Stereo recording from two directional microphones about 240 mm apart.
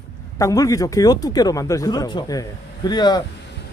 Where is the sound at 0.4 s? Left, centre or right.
Centre.